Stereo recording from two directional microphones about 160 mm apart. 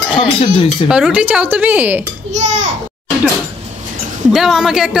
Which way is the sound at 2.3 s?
50° right (ahead or behind).